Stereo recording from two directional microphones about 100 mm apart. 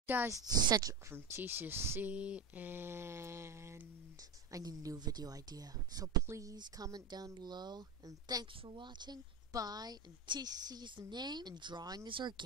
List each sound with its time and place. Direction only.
0.0 s speech: 20° right (ahead or behind)
0.3 s speech: 40° right (ahead or behind)
1.1 s speech: 20° right (ahead or behind)
6.5 s a woman's voice: 40° right (ahead or behind)
8.6 s a woman's voice: 50° right (ahead or behind)
12.1 s a woman's voice: 55° right (ahead or behind)